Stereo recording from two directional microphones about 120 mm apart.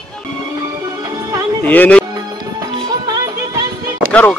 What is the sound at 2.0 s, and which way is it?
Music, 30° right (ahead or behind).